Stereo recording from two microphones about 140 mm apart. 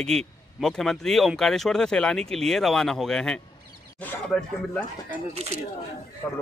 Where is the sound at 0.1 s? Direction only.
5° left (ahead or behind).